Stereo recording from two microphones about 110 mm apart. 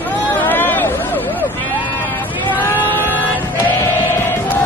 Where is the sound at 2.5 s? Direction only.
15° left (ahead or behind).